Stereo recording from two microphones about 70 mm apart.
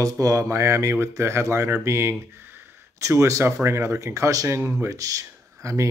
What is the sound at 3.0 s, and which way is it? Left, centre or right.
Speech, right.